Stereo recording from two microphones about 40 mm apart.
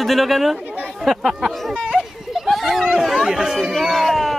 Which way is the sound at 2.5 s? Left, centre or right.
Centre.